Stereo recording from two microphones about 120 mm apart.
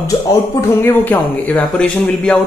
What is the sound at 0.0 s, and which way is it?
Speech, 30° left (ahead or behind).